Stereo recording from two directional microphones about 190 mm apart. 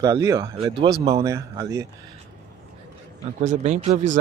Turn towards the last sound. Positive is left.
turn(degrees=-35)  # may be behind; listen again after turning